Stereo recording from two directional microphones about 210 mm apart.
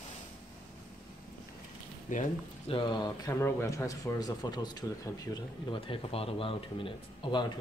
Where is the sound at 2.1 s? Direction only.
30° left (ahead or behind).